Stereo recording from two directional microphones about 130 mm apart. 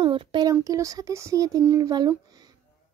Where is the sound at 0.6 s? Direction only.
25° right (ahead or behind).